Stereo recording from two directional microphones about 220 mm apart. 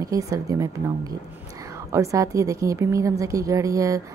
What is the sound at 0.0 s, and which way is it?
Speech, 15° right (ahead or behind).